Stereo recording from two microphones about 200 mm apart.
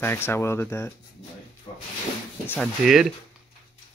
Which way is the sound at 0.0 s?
10° left (ahead or behind).